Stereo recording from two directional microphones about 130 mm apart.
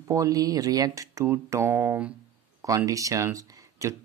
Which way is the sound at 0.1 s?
25° right (ahead or behind).